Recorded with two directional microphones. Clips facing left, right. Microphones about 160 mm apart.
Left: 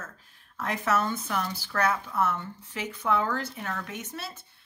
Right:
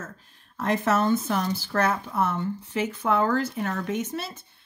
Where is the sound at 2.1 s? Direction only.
20° right (ahead or behind).